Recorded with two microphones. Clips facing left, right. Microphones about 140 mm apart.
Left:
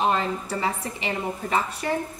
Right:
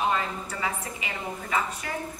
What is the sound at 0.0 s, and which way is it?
A woman's voice, 35° left (ahead or behind).